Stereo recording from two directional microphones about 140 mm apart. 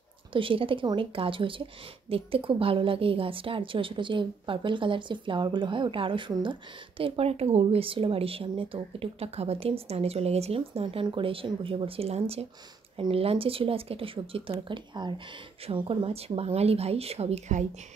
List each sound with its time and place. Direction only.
0.3 s speech: 40° right (ahead or behind); by 17.6 s 55° right (ahead or behind)